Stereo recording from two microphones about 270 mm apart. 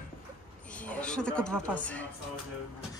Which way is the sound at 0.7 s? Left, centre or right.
Centre.